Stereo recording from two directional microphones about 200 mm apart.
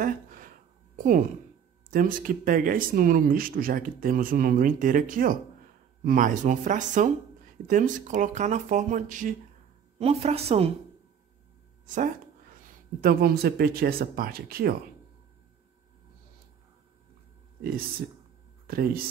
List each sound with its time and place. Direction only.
0.0 s a sound: 45° right (ahead or behind)
0.9 s speech: 40° right (ahead or behind)
11.8 s speech: 40° right (ahead or behind)
13.0 s speech: 50° right (ahead or behind)
17.6 s speech: 50° right (ahead or behind)